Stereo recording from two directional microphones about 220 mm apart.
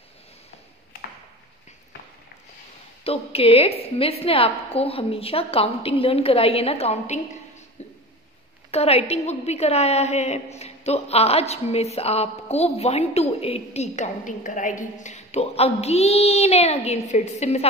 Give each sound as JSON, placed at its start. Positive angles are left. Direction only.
{"t": 3.0, "sound": "a woman's voice", "side_deg": 25}
{"t": 8.7, "sound": "a woman's voice", "side_deg": 30}